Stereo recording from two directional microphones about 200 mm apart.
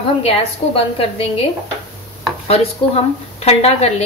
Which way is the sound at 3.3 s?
30° left (ahead or behind).